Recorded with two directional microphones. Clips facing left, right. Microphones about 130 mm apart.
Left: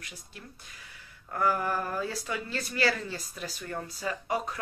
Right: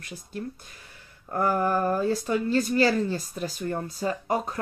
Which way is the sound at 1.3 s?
35° right (ahead or behind).